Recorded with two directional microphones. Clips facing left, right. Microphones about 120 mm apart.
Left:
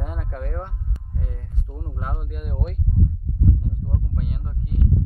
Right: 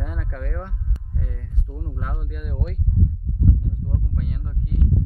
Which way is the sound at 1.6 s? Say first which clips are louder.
Right 2 dB; 15° left (ahead or behind).